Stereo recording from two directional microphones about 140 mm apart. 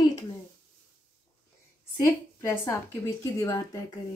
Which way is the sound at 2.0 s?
20° left (ahead or behind).